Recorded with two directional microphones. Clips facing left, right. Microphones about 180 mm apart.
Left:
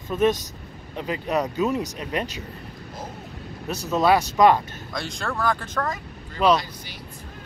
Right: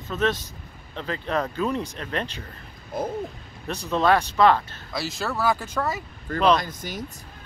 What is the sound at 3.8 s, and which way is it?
Speech, 10° left (ahead or behind).